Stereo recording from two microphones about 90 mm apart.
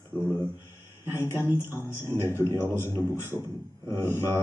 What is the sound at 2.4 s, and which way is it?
Speech, 30° right (ahead or behind).